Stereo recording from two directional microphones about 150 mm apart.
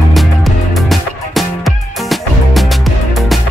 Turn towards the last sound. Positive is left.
turn(degrees=0)  # may be behind; listen again after turning